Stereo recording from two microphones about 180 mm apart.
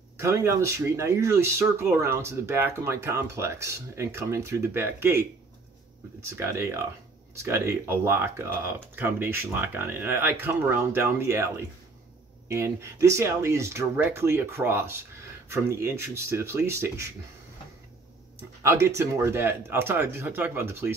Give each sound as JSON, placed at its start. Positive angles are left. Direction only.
{"t": 0.2, "sound": "speech", "side_deg": -15}
{"t": 6.3, "sound": "speech", "side_deg": -15}
{"t": 18.6, "sound": "speech", "side_deg": -15}